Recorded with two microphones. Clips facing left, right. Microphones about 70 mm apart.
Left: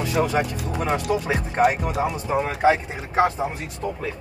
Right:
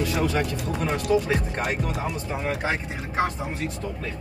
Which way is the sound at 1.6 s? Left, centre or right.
Centre.